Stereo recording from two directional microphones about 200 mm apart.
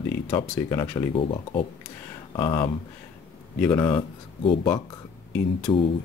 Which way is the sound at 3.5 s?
10° left (ahead or behind).